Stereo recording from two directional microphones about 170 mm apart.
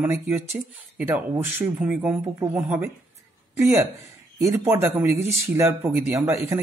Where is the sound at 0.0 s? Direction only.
10° right (ahead or behind).